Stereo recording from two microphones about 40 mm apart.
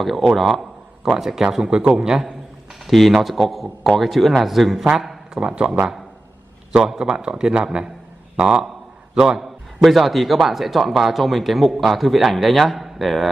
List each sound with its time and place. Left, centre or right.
0.0 s a man's voice: centre
2.9 s a man's voice: centre
5.3 s a man's voice: right
6.8 s a man's voice: centre
9.1 s a man's voice: right
9.4 s a man's voice: centre